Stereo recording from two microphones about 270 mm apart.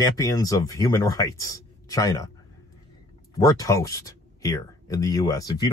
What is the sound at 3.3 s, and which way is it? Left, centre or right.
Speech, centre.